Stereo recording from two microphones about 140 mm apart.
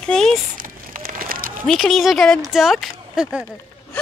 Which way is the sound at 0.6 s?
90° right.